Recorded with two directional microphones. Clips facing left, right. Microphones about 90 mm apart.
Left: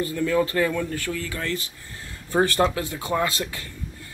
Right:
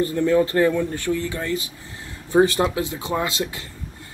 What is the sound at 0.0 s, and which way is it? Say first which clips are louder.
Speech: right 4 dB; 30° right (ahead or behind).